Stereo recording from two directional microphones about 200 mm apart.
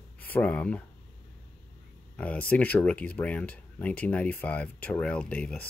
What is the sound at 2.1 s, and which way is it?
Speech, 5° left (ahead or behind).